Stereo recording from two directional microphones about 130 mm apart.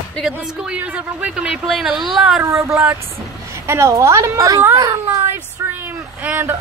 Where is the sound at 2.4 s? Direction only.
20° right (ahead or behind).